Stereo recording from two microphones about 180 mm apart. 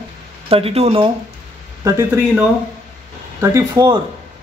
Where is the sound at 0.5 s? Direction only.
30° right (ahead or behind).